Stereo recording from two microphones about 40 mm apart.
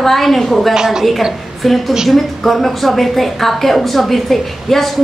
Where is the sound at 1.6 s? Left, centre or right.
Centre.